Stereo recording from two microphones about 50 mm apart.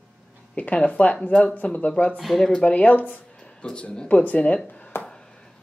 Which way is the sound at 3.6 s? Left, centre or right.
Left.